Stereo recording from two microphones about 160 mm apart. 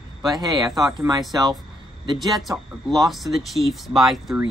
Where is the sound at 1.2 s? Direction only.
Centre (ahead or behind).